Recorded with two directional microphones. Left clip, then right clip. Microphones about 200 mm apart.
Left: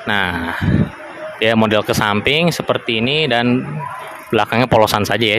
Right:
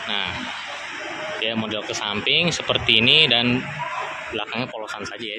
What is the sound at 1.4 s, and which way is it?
Speech, 35° left (ahead or behind).